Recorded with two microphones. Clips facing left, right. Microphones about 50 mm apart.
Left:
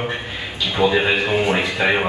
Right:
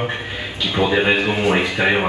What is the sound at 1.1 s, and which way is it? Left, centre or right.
Speech, centre.